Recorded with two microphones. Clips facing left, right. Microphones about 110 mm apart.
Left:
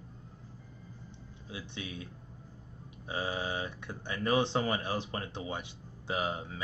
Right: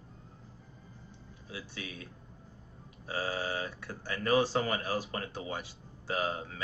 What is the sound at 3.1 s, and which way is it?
Speech, 20° left (ahead or behind).